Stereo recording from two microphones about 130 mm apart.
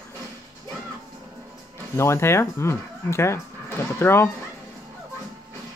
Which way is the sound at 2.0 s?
20° left (ahead or behind).